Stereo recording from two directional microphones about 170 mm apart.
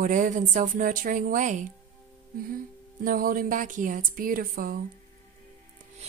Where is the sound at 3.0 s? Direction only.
55° right (ahead or behind).